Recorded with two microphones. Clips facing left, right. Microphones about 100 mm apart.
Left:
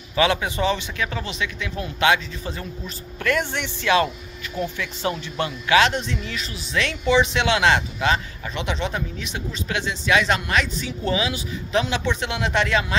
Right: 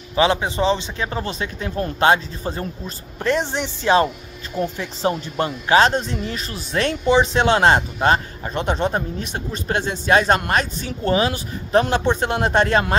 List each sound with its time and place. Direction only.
0.1 s a man's voice: 30° right (ahead or behind)
1.2 s speech: 40° right (ahead or behind)